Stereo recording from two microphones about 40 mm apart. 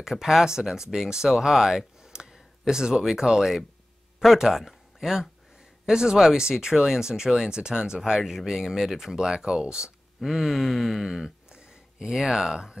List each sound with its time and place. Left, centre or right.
0.0 s speech: centre
10.2 s speech: centre
11.5 s a sound: centre